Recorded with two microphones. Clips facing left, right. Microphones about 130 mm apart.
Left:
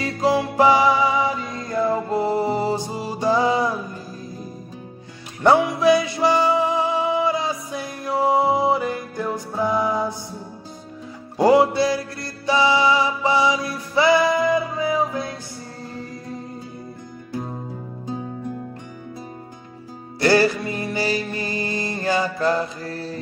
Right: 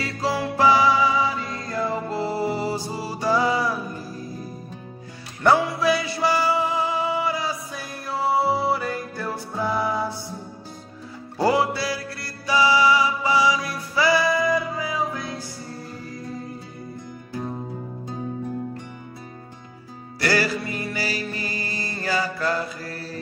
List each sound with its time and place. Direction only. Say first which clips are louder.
0.0 s music: left 5 dB; 20° left (ahead or behind)
5.4 s music: left 3 dB; 20° left (ahead or behind)
11.3 s music: left 6 dB; 20° left (ahead or behind)
20.2 s music: left 6 dB; 25° left (ahead or behind)